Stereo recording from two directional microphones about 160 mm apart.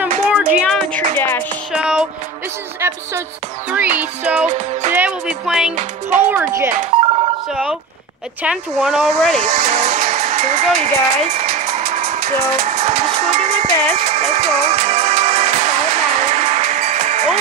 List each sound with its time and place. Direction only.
0.3 s music: 5° right (ahead or behind)
2.8 s music: 15° right (ahead or behind)
4.5 s music: 45° right (ahead or behind)
4.9 s speech: 5° right (ahead or behind)
6.1 s music: 10° right (ahead or behind)
8.4 s speech: 5° right (ahead or behind)
9.3 s music: 45° right (ahead or behind)